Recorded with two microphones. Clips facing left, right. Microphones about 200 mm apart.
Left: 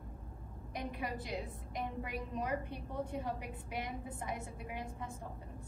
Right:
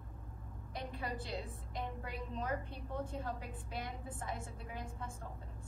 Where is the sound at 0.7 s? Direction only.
15° left (ahead or behind).